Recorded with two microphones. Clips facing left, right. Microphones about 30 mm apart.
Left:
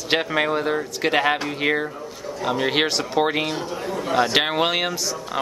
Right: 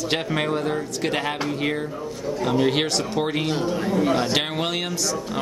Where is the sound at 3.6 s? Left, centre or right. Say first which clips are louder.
Right 5 dB; centre.